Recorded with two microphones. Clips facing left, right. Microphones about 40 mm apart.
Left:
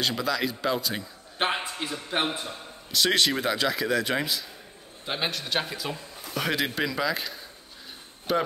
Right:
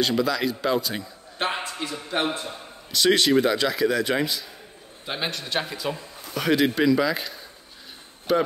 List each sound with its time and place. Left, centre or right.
0.0 s a man's voice: centre
1.4 s a man's voice: left
2.4 s a man's voice: centre